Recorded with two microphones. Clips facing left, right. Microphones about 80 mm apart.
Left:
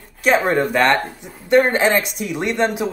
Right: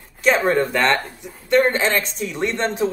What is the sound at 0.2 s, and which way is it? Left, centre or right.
Speech, centre.